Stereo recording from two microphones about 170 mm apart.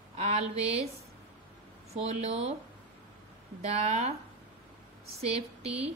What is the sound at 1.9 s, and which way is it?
Speech, 40° right (ahead or behind).